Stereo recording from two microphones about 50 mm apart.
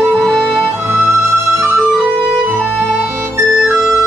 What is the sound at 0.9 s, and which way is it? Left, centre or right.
Music, right.